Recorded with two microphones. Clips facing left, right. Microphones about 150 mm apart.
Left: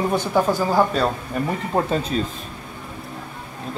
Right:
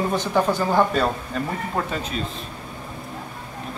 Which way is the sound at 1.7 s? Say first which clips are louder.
Left 8 dB; 35° left (ahead or behind).